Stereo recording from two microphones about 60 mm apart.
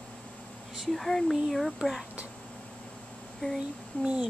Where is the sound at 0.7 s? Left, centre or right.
Centre.